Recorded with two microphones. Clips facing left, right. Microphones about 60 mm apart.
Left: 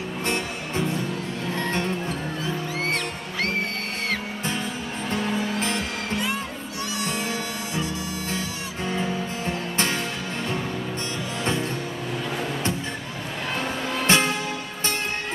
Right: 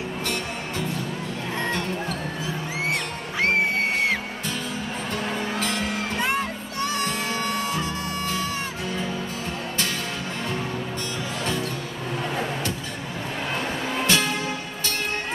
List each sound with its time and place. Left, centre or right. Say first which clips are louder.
6.1 s music: right 2 dB; right
14.0 s music: left 3 dB; left